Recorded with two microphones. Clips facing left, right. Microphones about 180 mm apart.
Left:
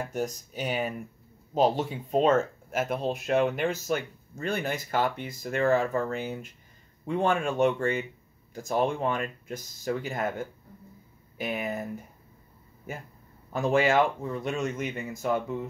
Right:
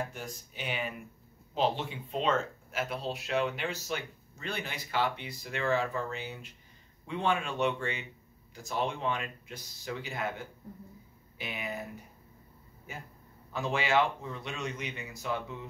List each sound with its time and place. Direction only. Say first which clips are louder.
0.1 s speech: left 11 dB; 40° left (ahead or behind)
12.9 s speech: left 6 dB; 50° left (ahead or behind)